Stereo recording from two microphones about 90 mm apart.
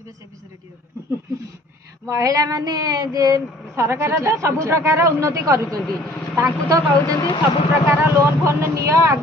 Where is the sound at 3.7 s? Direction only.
30° right (ahead or behind).